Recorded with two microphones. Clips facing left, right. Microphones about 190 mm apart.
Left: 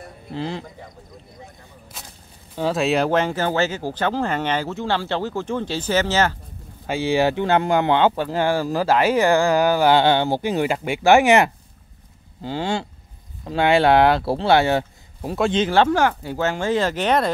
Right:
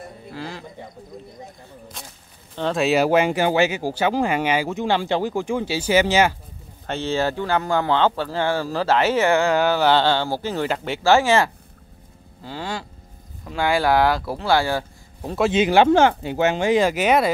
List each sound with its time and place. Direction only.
0.3 s speech: 25° left (ahead or behind)
2.0 s speech: 5° left (ahead or behind); by 6.3 s 10° right (ahead or behind)
6.9 s speech: 10° left (ahead or behind)
15.2 s speech: centre (ahead or behind)
15.9 s speech: 25° right (ahead or behind); by 17.3 s 10° right (ahead or behind)